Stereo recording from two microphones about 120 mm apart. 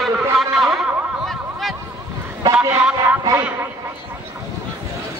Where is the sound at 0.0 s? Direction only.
Centre (ahead or behind).